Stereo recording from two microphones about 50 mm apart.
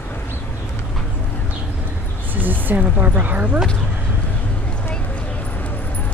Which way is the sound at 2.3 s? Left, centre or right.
Right.